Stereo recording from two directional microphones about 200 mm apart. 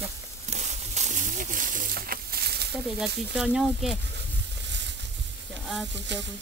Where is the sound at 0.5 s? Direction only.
35° right (ahead or behind); by 2.7 s 55° right (ahead or behind).